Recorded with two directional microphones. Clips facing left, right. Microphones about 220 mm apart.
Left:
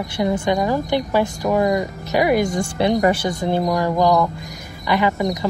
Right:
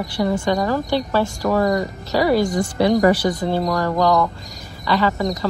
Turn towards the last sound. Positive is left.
turn(degrees=15)  # may be behind; listen again after turning